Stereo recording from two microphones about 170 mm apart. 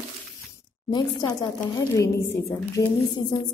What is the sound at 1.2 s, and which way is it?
A woman's voice, 20° left (ahead or behind).